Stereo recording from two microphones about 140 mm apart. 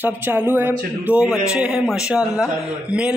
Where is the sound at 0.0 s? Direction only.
15° right (ahead or behind).